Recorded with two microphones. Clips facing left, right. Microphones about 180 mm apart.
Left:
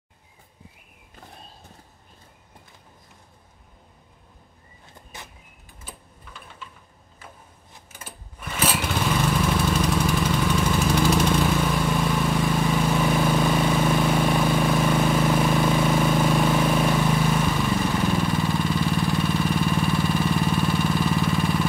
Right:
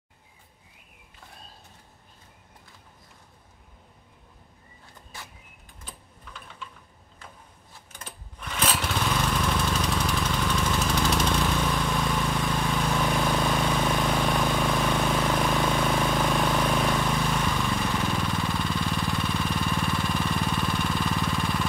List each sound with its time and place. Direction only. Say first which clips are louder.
5.1 s vehicle: left 2 dB; 20° left (ahead or behind)
5.9 s typing: left 2 dB; 5° left (ahead or behind)
7.9 s lawn mower: left 1 dB; 5° left (ahead or behind)